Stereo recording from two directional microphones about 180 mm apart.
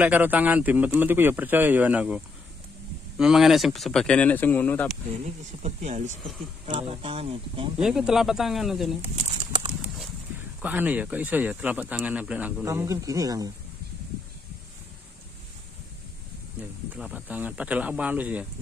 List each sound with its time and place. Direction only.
0.0 s speech: 10° right (ahead or behind); by 4.9 s 10° left (ahead or behind)
5.6 s speech: 40° right (ahead or behind)
7.7 s speech: 5° right (ahead or behind)
10.6 s speech: 10° right (ahead or behind)
16.6 s speech: 10° right (ahead or behind)